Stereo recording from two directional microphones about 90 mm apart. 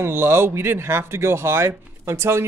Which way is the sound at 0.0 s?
25° right (ahead or behind).